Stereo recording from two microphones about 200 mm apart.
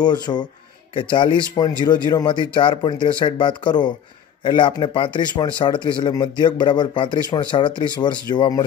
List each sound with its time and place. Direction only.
0.0 s speech: 20° left (ahead or behind)